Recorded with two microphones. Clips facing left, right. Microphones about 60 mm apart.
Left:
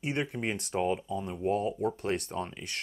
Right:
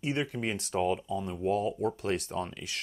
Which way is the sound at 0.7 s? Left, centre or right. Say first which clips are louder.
Right 1 dB; left.